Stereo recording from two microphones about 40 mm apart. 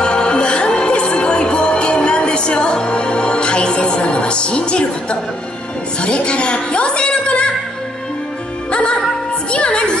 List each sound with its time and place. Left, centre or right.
0.0 s music: left
5.9 s music: left
9.5 s music: left